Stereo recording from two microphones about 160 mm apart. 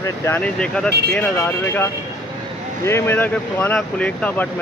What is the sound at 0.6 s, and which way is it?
Speech, 5° left (ahead or behind).